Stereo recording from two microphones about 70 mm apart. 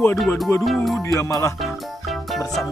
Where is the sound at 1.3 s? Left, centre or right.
Left.